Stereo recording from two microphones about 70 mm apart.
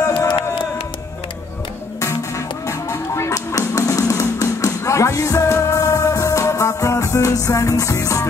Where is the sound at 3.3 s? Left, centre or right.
Left.